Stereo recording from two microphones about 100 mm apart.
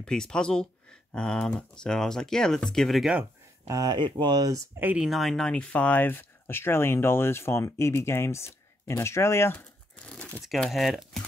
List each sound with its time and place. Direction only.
0.0 s speech: 5° left (ahead or behind)
3.6 s speech: 35° right (ahead or behind)
4.9 s speech: 5° right (ahead or behind); by 9.7 s 25° left (ahead or behind)
10.0 s crumpling: 10° left (ahead or behind)
10.4 s speech: centre (ahead or behind)